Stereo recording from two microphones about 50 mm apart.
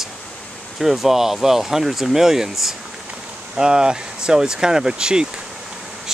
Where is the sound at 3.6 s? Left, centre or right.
Centre.